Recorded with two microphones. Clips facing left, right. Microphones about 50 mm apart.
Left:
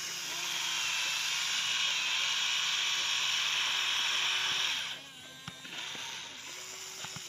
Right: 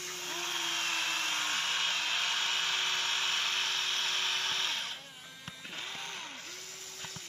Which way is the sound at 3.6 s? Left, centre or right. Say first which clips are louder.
Left 1 dB; centre.